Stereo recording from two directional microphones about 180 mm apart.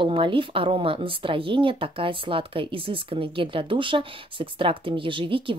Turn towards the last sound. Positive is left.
turn(degrees=-25)  # may be behind; listen again after turning